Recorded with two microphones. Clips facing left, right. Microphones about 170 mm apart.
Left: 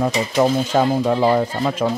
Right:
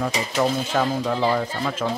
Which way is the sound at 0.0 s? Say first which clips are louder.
Left 5 dB; 25° left (ahead or behind).